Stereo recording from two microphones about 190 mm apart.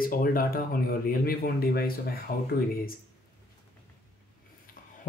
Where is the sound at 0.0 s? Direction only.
50° left (ahead or behind).